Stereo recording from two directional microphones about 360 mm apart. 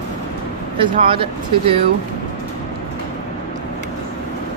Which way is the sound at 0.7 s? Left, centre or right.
Centre.